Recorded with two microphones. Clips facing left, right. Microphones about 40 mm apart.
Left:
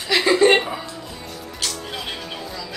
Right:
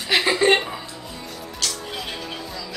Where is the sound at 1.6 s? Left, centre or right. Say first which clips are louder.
Even; centre.